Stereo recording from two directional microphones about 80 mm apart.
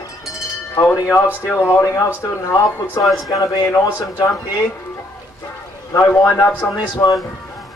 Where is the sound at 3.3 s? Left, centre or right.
Left.